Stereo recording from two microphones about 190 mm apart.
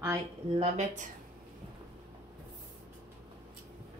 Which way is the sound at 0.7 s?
40° right (ahead or behind).